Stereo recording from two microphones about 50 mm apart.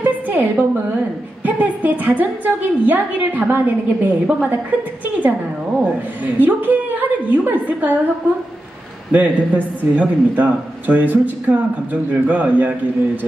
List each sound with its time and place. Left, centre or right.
0.0 s a sound: right
1.4 s a man's voice: right
6.4 s a woman's voice: right
9.1 s a man's voice: right